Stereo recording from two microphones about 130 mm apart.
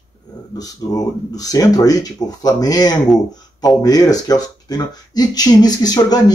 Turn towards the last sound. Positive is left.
turn(degrees=30)  # may be behind; listen again after turning